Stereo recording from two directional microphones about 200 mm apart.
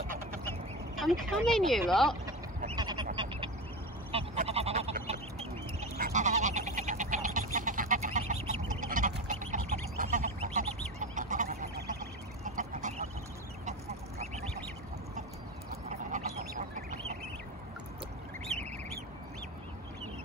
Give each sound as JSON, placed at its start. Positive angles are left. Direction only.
{"t": 0.9, "sound": "speech", "side_deg": 0}
{"t": 2.7, "sound": "a sound", "side_deg": -20}
{"t": 4.1, "sound": "goose", "side_deg": -30}
{"t": 8.6, "sound": "duck", "side_deg": -40}
{"t": 10.4, "sound": "goose", "side_deg": -40}
{"t": 12.4, "sound": "duck", "side_deg": -40}
{"t": 15.9, "sound": "duck", "side_deg": -40}
{"t": 18.5, "sound": "bird", "side_deg": 0}